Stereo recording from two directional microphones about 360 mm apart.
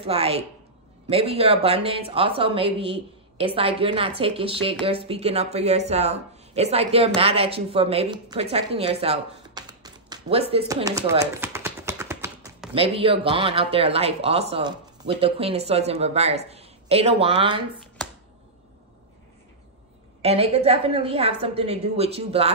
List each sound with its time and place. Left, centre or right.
0.0 s a woman's voice: centre
20.2 s a woman's voice: centre